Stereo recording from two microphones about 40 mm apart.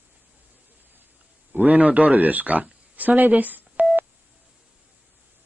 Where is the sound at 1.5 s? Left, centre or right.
Right.